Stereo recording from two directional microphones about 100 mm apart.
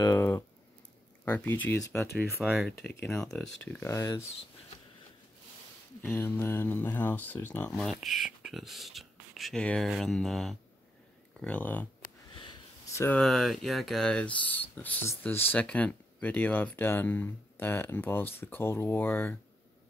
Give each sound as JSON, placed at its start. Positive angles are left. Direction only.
{"t": 0.0, "sound": "a sound", "side_deg": 30}
{"t": 1.2, "sound": "speech", "side_deg": 15}
{"t": 2.4, "sound": "speech", "side_deg": -5}
{"t": 3.1, "sound": "speech", "side_deg": 5}
{"t": 3.8, "sound": "speech", "side_deg": 35}
{"t": 6.0, "sound": "speech", "side_deg": 25}
{"t": 7.7, "sound": "speech", "side_deg": 5}
{"t": 9.6, "sound": "speech", "side_deg": 10}
{"t": 11.3, "sound": "speech", "side_deg": 15}
{"t": 13.1, "sound": "speech", "side_deg": 5}